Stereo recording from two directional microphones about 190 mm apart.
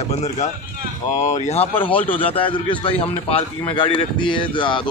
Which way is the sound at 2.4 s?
30° left (ahead or behind).